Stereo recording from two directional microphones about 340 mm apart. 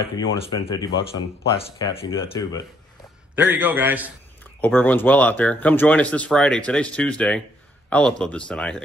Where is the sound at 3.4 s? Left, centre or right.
Centre.